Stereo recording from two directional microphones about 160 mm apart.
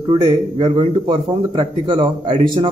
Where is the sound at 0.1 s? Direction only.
30° right (ahead or behind).